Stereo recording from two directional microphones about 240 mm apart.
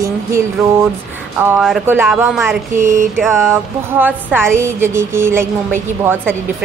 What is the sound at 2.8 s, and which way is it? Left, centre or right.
Mantra, right.